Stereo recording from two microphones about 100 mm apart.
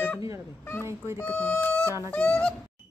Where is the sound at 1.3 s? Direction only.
20° left (ahead or behind).